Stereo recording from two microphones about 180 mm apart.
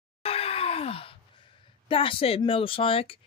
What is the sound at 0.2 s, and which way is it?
Groan, 30° left (ahead or behind).